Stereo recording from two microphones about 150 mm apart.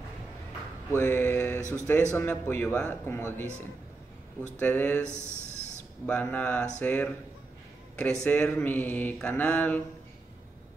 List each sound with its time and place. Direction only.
0.9 s mantra: 15° left (ahead or behind)
1.6 s speech: 20° right (ahead or behind)
2.1 s mantra: 15° left (ahead or behind)
4.6 s mantra: 10° left (ahead or behind)
5.0 s a sound: 15° right (ahead or behind)
6.0 s mantra: 10° left (ahead or behind)